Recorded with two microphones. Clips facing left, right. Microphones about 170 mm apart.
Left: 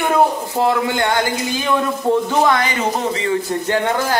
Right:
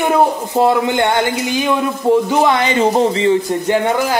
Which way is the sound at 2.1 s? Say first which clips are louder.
Right 3 dB; 15° right (ahead or behind).